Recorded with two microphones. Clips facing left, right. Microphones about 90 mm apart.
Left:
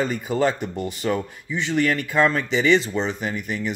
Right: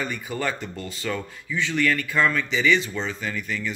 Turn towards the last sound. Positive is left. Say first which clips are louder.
# left 3 dB
turn(degrees=25)  # may be behind; listen again after turning